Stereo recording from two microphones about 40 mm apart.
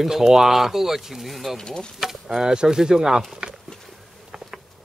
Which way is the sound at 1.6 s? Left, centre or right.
Centre.